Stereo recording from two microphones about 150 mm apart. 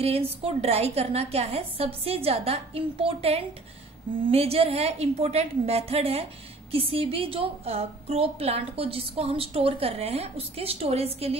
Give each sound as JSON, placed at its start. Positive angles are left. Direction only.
{"t": 0.0, "sound": "a woman's voice", "side_deg": -40}